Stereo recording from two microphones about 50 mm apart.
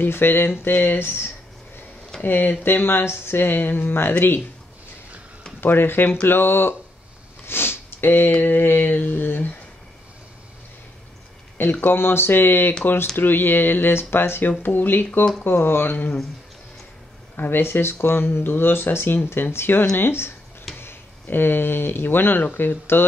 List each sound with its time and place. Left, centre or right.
0.0 s speech: left
2.2 s mantra: left
2.6 s speech: left
5.6 s speech: left
7.4 s sniff: left
8.3 s mantra: left
11.7 s speech: left
14.6 s mantra: left
15.4 s speech: left
17.4 s speech: left